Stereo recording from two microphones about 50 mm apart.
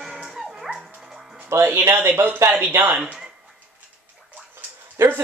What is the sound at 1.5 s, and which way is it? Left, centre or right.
Speech, right.